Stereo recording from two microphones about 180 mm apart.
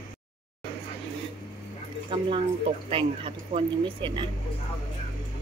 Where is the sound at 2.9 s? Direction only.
30° right (ahead or behind).